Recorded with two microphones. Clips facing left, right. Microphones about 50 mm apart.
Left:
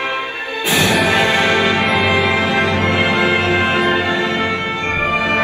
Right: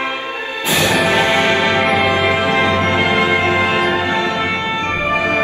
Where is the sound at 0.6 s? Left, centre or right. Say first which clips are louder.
Left 1 dB; left.